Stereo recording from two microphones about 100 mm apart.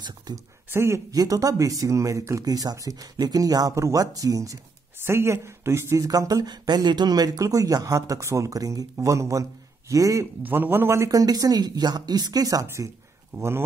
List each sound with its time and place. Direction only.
0.3 s speech: 40° right (ahead or behind)
0.7 s a man's voice: 25° right (ahead or behind)
1.1 s speech: 40° right (ahead or behind)
10.4 s a man's voice: 20° right (ahead or behind)
11.1 s a man's voice: 40° right (ahead or behind)